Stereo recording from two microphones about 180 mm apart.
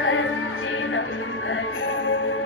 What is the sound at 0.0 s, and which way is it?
Music, 90° left.